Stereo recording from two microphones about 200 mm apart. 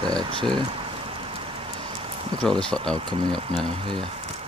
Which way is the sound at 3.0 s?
25° right (ahead or behind).